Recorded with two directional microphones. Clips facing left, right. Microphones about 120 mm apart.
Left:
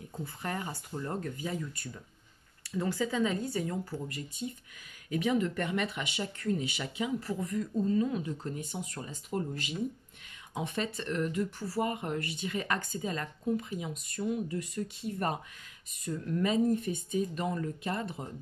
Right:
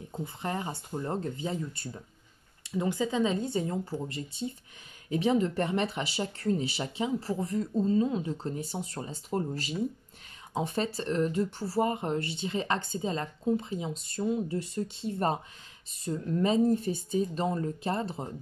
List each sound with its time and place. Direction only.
0.1 s speech: 20° right (ahead or behind)